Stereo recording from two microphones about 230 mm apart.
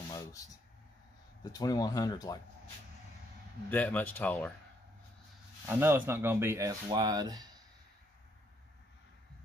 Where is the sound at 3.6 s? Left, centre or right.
Centre.